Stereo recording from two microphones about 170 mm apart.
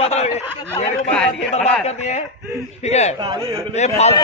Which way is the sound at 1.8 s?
40° left (ahead or behind).